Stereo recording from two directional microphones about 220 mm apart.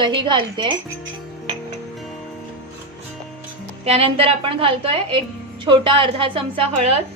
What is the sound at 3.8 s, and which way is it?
A woman's voice, 25° right (ahead or behind).